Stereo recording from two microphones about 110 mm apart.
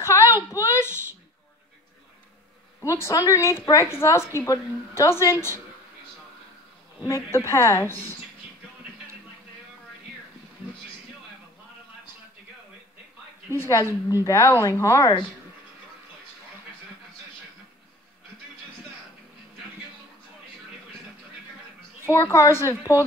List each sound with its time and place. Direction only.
0.0 s a sound: 25° left (ahead or behind)
2.8 s a woman's voice: 30° left (ahead or behind)
7.0 s a woman's voice: 25° left (ahead or behind)
13.5 s a woman's voice: 25° left (ahead or behind)
22.0 s a woman's voice: 25° left (ahead or behind)